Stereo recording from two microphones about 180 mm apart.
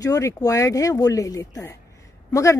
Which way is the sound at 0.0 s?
20° left (ahead or behind).